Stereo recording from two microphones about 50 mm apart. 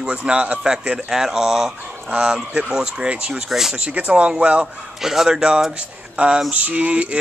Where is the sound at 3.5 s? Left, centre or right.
Centre.